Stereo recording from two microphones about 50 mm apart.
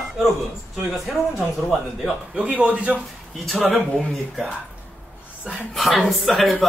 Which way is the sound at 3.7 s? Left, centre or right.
Centre.